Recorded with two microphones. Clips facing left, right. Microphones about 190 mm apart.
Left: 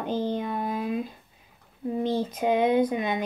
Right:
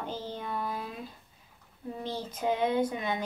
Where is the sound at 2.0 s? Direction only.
20° left (ahead or behind).